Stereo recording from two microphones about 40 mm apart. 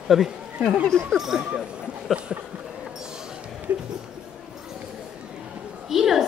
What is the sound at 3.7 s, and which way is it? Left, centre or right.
Speech, right.